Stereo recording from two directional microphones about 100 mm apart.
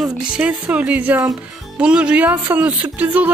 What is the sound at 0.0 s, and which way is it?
Speech, 10° right (ahead or behind).